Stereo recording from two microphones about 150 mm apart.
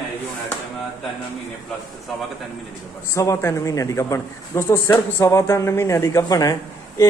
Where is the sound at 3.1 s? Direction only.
20° left (ahead or behind).